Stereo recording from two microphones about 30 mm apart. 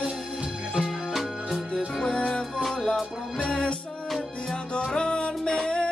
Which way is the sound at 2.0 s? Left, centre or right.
Left.